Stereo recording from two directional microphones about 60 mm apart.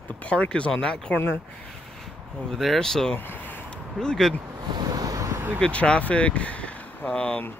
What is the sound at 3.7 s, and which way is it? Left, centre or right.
Speech, centre.